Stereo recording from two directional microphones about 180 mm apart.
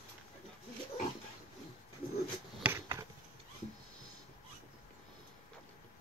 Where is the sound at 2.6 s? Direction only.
15° right (ahead or behind).